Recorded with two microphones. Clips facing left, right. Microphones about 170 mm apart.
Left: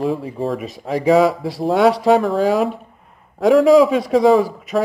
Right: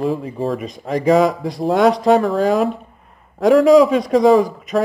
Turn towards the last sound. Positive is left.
turn(degrees=5)  # may be behind; listen again after turning